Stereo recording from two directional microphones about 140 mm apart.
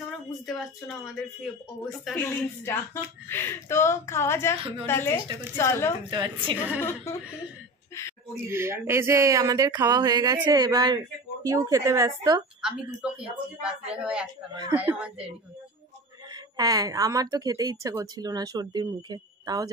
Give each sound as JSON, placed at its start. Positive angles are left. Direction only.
{"t": 0.6, "sound": "speech", "side_deg": 0}
{"t": 2.2, "sound": "a woman's voice", "side_deg": 15}
{"t": 6.0, "sound": "a woman's voice", "side_deg": -35}
{"t": 6.8, "sound": "speech", "side_deg": 15}
{"t": 8.5, "sound": "speech", "side_deg": -20}
{"t": 13.0, "sound": "speech", "side_deg": -5}
{"t": 16.5, "sound": "speech", "side_deg": -25}